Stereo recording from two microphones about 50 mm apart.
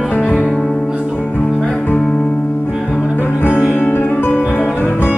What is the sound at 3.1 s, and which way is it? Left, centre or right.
Music, left.